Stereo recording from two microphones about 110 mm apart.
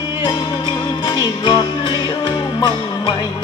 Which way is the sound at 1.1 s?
45° left (ahead or behind).